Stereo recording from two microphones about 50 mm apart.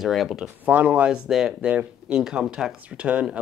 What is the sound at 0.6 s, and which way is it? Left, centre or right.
Speech, right.